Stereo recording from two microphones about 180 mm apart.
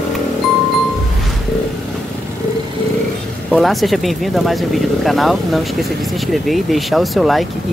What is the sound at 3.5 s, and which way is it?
Speech, centre (ahead or behind).